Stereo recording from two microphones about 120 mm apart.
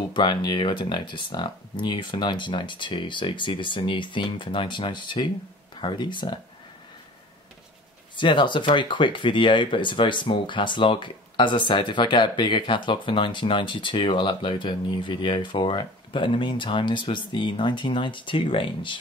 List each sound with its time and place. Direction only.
0.1 s speech: 40° left (ahead or behind)
8.2 s speech: 40° left (ahead or behind)